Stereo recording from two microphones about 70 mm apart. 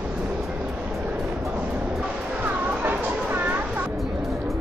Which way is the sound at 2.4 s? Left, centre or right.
Right.